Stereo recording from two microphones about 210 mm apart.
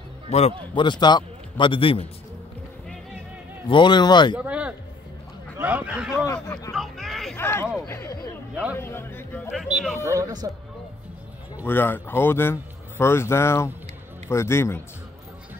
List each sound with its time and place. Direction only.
0.3 s a man's voice: 30° left (ahead or behind)
3.6 s speech: 20° left (ahead or behind)
4.4 s a sound: 5° right (ahead or behind)
5.6 s speech: 5° right (ahead or behind)
6.1 s speech: 15° left (ahead or behind)
6.7 s a sound: centre (ahead or behind)
7.3 s speech: 10° left (ahead or behind)
9.5 s speech: centre (ahead or behind)
10.0 s speech: 15° right (ahead or behind)
11.6 s speech: 10° left (ahead or behind)